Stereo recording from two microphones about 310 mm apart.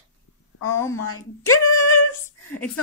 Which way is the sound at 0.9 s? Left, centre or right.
Left.